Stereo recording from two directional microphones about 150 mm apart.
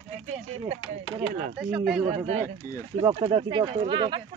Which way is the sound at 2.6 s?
60° right (ahead or behind).